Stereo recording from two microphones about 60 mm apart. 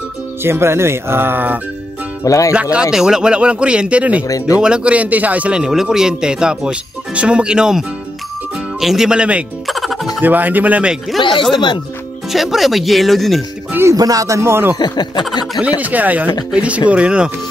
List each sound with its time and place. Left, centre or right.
0.4 s speech: right
2.2 s speech: left
2.5 s speech: centre
5.6 s speech: centre
9.7 s music: centre
10.2 s speech: right
11.1 s speech: centre
13.9 s speech: right
14.4 s speech: right
15.6 s speech: right